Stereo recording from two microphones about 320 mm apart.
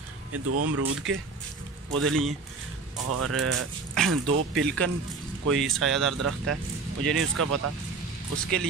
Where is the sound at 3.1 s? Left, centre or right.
Right.